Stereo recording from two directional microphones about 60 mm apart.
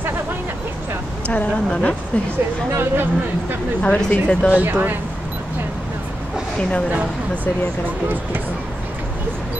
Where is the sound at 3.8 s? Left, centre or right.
Centre.